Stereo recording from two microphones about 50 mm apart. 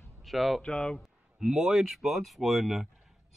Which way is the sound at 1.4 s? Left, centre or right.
Centre.